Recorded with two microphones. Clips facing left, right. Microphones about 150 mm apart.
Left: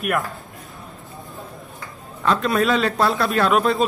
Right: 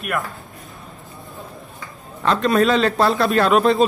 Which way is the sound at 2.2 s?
5° left (ahead or behind).